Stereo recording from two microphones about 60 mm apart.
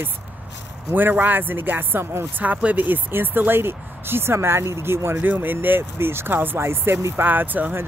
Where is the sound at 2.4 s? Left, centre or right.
Right.